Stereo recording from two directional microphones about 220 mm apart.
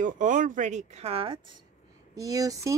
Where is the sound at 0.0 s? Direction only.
35° right (ahead or behind).